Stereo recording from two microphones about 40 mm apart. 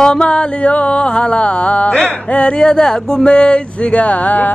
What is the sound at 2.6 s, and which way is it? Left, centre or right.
Speech, centre.